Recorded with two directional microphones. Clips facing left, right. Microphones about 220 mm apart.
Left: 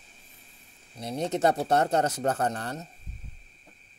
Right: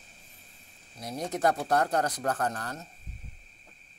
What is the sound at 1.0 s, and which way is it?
Speech, 25° left (ahead or behind).